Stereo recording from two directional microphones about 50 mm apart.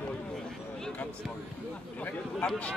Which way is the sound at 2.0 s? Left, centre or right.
Left.